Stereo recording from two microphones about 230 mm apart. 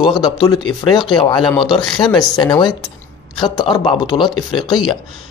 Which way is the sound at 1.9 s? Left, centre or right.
Centre.